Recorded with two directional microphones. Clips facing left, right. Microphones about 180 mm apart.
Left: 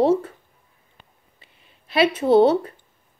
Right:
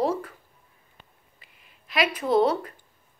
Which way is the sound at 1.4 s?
30° left (ahead or behind).